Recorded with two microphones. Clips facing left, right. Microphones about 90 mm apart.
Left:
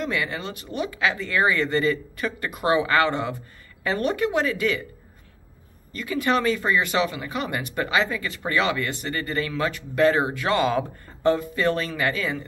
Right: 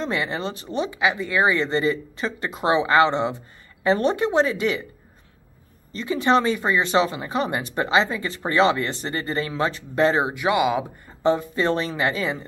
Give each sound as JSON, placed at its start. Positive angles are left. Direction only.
{"t": 0.0, "sound": "speech", "side_deg": -25}
{"t": 5.9, "sound": "speech", "side_deg": -25}